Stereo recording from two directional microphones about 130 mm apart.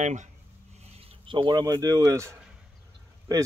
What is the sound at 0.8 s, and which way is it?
Speech, 50° right (ahead or behind).